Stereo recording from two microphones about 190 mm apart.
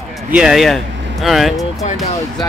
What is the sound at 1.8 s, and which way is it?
Speech, 35° left (ahead or behind).